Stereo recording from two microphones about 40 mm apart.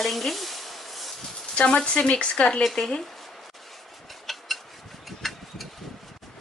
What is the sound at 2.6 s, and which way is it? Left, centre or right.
Speech, centre.